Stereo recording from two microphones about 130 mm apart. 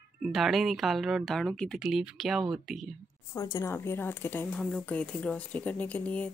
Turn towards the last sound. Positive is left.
turn(degrees=10)  # may be behind; listen again after turning